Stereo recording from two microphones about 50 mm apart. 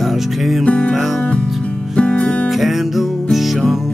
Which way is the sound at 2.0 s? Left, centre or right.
Left.